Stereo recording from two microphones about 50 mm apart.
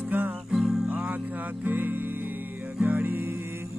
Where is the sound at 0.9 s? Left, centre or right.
Right.